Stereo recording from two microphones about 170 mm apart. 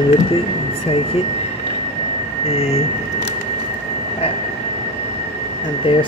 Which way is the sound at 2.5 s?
40° left (ahead or behind).